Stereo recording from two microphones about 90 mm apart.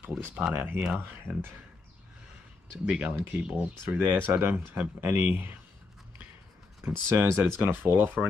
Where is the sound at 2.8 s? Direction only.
15° right (ahead or behind).